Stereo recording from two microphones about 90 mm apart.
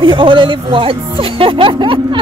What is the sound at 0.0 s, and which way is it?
Speech, 65° right (ahead or behind).